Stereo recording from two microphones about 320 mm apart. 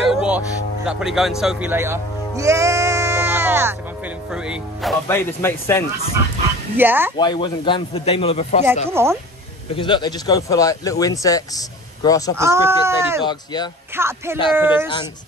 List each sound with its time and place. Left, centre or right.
0.1 s music: centre
0.8 s speech: centre
6.8 s speech: centre
7.2 s speech: centre
8.9 s speech: centre
9.8 s speech: centre
12.4 s speech: centre
13.2 s speech: centre
13.9 s speech: centre